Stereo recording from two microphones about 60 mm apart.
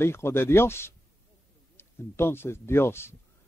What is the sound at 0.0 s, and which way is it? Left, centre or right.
Speech, left.